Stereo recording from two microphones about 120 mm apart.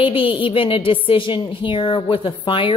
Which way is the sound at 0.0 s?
45° left (ahead or behind).